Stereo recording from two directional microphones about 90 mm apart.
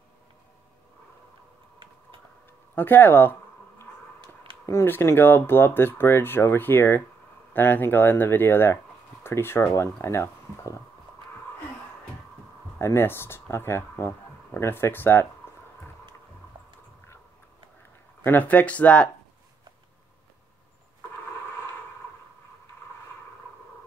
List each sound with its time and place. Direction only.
2.7 s zipper: 20° left (ahead or behind)
4.2 s a sound: 75° right (ahead or behind)
4.6 s speech: 25° left (ahead or behind)
12.7 s speech: 25° left (ahead or behind)
18.2 s speech: 20° left (ahead or behind)